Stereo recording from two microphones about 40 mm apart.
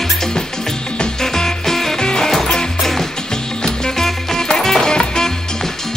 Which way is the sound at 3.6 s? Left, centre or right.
Centre.